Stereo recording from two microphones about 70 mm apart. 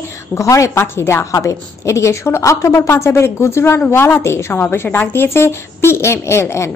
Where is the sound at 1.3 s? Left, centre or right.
Left.